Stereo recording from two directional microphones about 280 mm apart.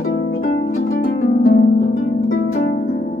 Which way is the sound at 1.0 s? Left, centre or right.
Left.